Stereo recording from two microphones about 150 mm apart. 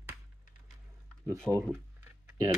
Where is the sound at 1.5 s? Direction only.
15° left (ahead or behind).